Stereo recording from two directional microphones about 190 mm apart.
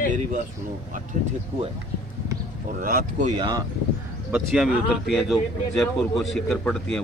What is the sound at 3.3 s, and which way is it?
Speech, 20° right (ahead or behind).